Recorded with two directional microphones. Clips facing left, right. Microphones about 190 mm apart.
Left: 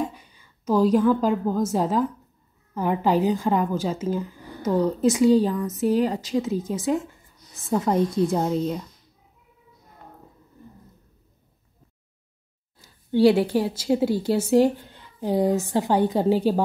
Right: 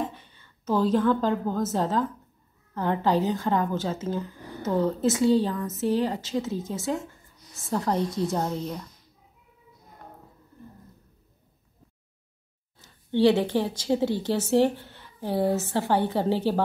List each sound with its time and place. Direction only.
0.1 s a sound: 10° left (ahead or behind)
0.9 s a woman's voice: 10° left (ahead or behind)
12.7 s a woman's voice: 10° left (ahead or behind)